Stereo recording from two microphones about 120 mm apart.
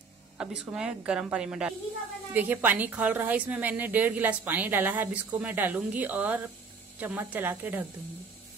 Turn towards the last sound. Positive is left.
turn(degrees=-15)  # may be behind; listen again after turning